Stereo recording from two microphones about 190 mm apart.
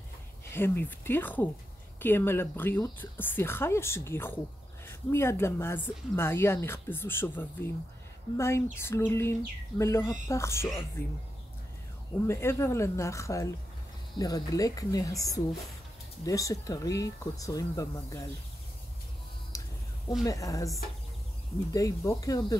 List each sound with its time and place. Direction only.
0.5 s speech: 10° left (ahead or behind)
12.3 s speech: 15° left (ahead or behind)
19.5 s a sound: 15° left (ahead or behind)
20.2 s speech: 15° left (ahead or behind)
21.7 s speech: 15° left (ahead or behind)